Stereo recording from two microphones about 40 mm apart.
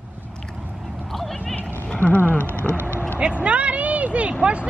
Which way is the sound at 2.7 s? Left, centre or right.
Right.